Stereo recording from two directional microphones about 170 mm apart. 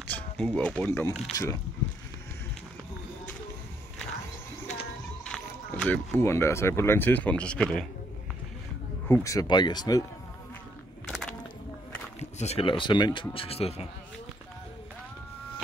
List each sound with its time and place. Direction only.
0.1 s speech: 5° left (ahead or behind)
5.2 s speech: 5° left (ahead or behind)
9.0 s speech: 15° left (ahead or behind)
11.1 s music: centre (ahead or behind)
12.2 s speech: 40° left (ahead or behind)